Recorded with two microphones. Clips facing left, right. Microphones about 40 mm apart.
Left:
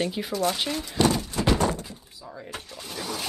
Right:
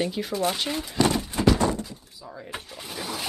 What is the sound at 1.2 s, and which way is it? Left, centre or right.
Clip-clop, centre.